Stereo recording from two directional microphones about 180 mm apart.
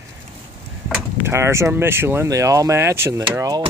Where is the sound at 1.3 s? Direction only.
15° right (ahead or behind).